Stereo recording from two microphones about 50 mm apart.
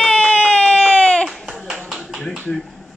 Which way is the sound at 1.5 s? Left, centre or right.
Centre.